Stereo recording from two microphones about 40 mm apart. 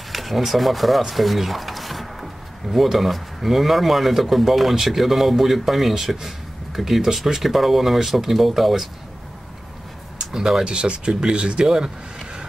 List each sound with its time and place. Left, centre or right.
0.1 s speech: centre
10.1 s a sound: centre
10.6 s speech: right